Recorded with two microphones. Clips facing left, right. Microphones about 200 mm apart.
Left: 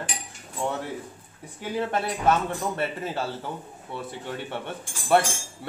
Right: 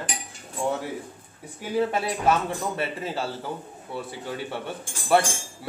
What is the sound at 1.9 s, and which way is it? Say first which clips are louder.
Speech: even; centre (ahead or behind).